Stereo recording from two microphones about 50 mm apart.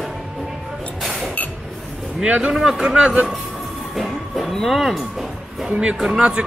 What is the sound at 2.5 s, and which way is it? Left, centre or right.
Speech, centre.